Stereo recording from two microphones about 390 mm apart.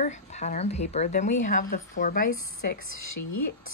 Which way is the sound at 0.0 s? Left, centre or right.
Centre.